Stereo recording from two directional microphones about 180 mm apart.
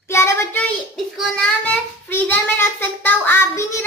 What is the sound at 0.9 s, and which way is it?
A child's voice, centre (ahead or behind).